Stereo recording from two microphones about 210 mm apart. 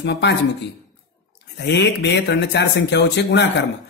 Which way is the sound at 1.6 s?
55° left (ahead or behind).